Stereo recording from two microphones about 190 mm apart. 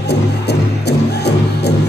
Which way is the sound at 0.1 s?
60° left (ahead or behind).